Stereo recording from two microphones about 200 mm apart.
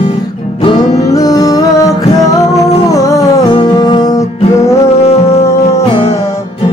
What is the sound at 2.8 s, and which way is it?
Music, 15° left (ahead or behind).